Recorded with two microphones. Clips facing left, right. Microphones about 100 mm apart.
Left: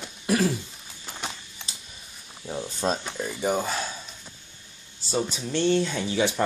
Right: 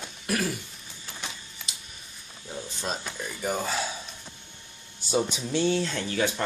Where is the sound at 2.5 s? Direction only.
35° left (ahead or behind).